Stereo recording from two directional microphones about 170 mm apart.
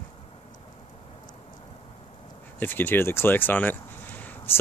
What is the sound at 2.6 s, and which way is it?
Speech, 10° left (ahead or behind).